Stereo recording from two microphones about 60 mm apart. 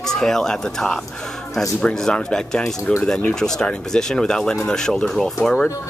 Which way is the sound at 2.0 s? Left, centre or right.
Centre.